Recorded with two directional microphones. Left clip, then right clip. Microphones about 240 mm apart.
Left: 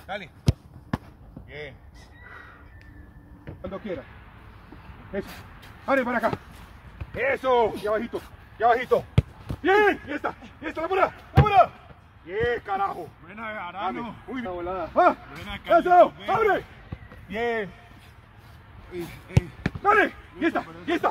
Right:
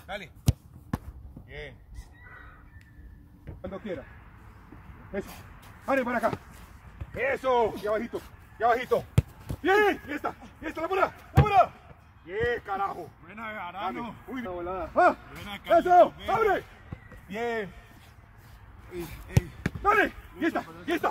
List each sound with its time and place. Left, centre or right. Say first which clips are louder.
0.0 s speech: left 4 dB; right
0.9 s fireworks: left 4 dB; centre
1.5 s speech: left 3 dB; right
3.6 s speech: left 3 dB; centre
5.1 s a man's voice: left 3 dB; centre
13.3 s speech: left 3 dB; right
14.3 s speech: left 3 dB; centre
15.4 s speech: left 3 dB; right
15.7 s speech: left 2 dB; centre
18.9 s speech: left 3 dB; right
19.6 s speech: left 3 dB; right